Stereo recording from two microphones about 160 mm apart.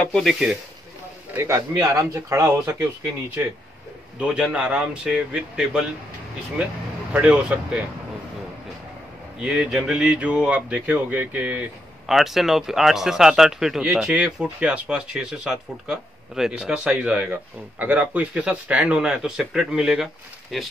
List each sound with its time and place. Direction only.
0.0 s speech: centre (ahead or behind)
1.3 s speech: 15° right (ahead or behind)
4.2 s speech: 5° right (ahead or behind)
9.4 s speech: 5° right (ahead or behind)